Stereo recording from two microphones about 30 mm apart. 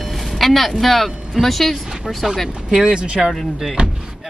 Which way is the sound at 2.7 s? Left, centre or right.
Right.